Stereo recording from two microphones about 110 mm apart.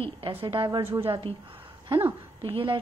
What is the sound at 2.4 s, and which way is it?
Speech, 50° right (ahead or behind).